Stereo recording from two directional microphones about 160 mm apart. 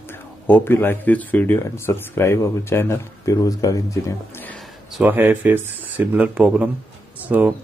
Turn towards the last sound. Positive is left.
turn(degrees=-10)  # may be behind; listen again after turning